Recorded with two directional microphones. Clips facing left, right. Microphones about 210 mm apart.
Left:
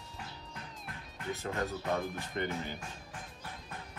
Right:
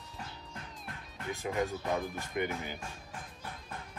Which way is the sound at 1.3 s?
15° right (ahead or behind).